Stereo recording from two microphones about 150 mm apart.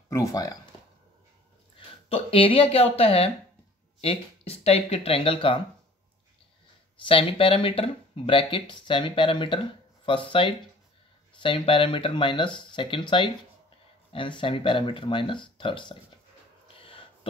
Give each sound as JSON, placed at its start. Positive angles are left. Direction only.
{"t": 0.1, "sound": "speech", "side_deg": 20}
{"t": 1.8, "sound": "speech", "side_deg": 40}
{"t": 7.0, "sound": "speech", "side_deg": 35}
{"t": 14.1, "sound": "speech", "side_deg": 35}
{"t": 16.6, "sound": "a sound", "side_deg": 35}